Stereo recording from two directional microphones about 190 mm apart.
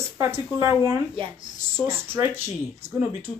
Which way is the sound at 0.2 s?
15° right (ahead or behind).